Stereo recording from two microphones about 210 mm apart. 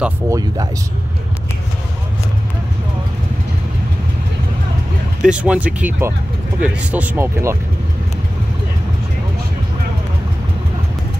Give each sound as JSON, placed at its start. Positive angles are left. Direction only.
{"t": 0.0, "sound": "speech", "side_deg": -15}
{"t": 5.2, "sound": "speech", "side_deg": -5}